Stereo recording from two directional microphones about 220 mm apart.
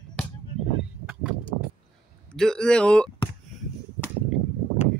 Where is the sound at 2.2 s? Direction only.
5° left (ahead or behind).